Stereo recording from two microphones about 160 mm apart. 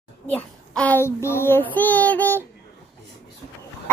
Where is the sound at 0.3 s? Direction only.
10° left (ahead or behind).